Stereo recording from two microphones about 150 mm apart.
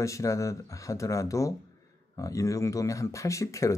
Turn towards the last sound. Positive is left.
turn(degrees=20)  # may be behind; listen again after turning